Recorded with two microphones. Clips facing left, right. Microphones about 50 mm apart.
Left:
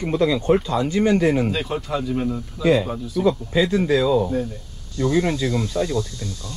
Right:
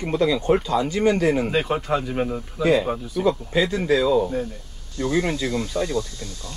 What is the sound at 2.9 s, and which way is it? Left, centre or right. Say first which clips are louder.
Speech: left 2 dB; centre.